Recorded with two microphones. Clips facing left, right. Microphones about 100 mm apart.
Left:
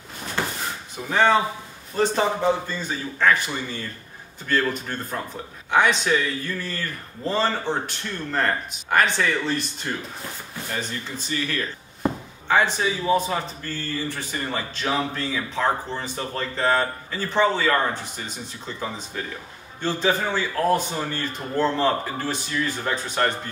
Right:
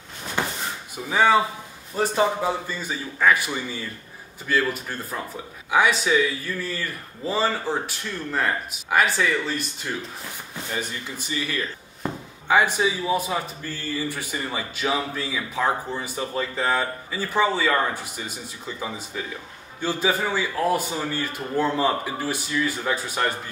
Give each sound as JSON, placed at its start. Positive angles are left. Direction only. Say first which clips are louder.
{"t": 0.4, "sound": "drawer open or close", "louder": "right 1 dB", "side_deg": -15}
{"t": 1.1, "sound": "speech", "louder": "even", "side_deg": -5}
{"t": 10.7, "sound": "speech", "louder": "even", "side_deg": -10}
{"t": 19.8, "sound": "speech", "louder": "left 1 dB", "side_deg": -10}